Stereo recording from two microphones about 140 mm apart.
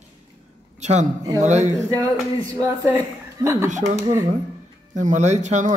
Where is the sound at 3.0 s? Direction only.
25° right (ahead or behind).